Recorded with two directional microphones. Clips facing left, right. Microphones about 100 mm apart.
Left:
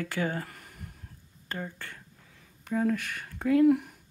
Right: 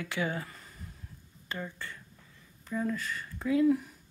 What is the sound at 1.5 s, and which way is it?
Speech, 55° left (ahead or behind).